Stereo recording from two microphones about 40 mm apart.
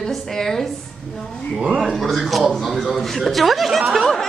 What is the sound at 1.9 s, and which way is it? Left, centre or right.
Speech, centre.